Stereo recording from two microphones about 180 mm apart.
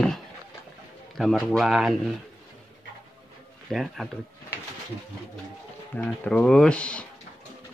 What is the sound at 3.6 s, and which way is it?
Speech, centre (ahead or behind).